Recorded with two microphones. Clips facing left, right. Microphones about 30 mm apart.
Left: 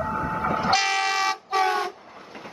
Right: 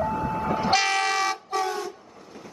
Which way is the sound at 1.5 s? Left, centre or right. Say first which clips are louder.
Left 5 dB; left.